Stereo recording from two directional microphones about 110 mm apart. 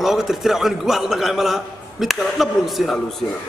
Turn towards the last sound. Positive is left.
turn(degrees=0)  # may be behind; listen again after turning